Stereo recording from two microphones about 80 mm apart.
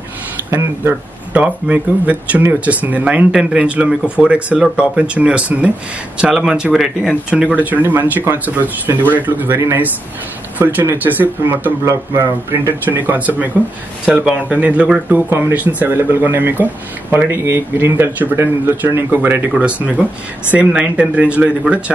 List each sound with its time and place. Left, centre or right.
0.5 s speech: right
1.3 s speech: centre
11.8 s speech: right
20.5 s speech: centre